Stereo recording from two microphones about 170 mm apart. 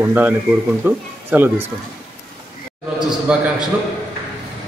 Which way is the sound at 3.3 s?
5° right (ahead or behind).